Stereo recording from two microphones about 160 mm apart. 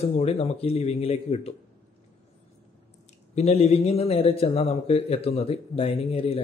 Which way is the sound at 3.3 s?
40° left (ahead or behind).